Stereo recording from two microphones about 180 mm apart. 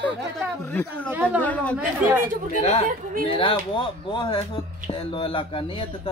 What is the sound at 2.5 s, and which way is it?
Speech, 35° left (ahead or behind).